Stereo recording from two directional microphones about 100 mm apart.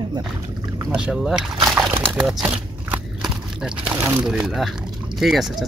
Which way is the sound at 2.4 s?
10° right (ahead or behind).